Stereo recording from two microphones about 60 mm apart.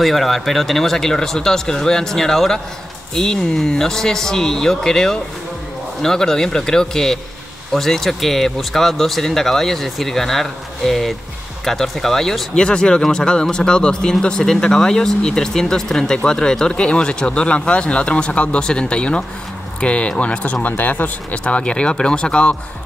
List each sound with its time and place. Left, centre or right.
0.0 s speech: centre